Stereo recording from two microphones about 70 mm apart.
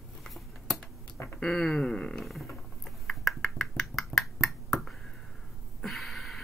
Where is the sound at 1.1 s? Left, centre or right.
Left.